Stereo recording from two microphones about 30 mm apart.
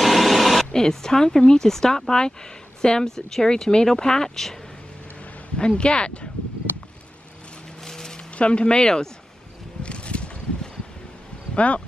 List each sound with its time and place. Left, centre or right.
0.0 s printer: centre
0.7 s speech: centre
3.2 s speech: centre
5.6 s speech: left
7.8 s a sound: centre
8.4 s speech: left
9.8 s a sound: left
11.5 s speech: left